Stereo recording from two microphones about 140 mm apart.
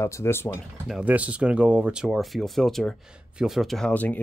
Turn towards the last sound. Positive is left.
turn(degrees=10)  # may be behind; listen again after turning